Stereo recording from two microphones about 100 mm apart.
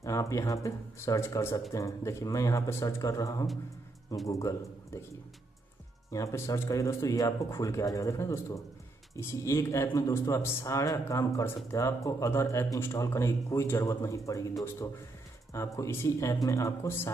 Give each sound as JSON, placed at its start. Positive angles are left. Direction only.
{"t": 0.0, "sound": "a man's voice", "side_deg": 30}
{"t": 6.0, "sound": "speech", "side_deg": 30}
{"t": 15.5, "sound": "speech", "side_deg": 30}